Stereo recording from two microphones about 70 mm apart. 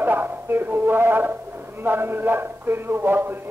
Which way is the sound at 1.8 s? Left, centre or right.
Right.